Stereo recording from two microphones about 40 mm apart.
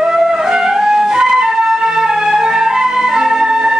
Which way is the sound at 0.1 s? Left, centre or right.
Centre.